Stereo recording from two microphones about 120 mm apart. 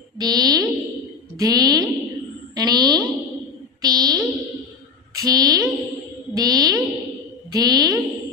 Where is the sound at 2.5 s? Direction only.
35° right (ahead or behind).